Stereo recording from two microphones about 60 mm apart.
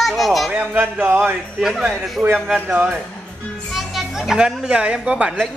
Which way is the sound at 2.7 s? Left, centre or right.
Right.